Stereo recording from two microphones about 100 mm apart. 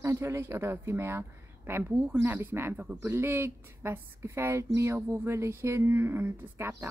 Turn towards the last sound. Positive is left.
turn(degrees=-25)  # may be behind; listen again after turning